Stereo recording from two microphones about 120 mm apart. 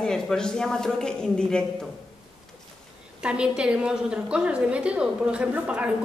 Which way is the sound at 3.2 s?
10° right (ahead or behind).